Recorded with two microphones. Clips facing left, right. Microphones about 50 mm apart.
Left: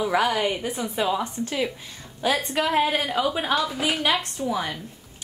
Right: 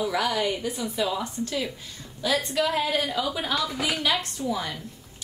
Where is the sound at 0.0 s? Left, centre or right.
Left.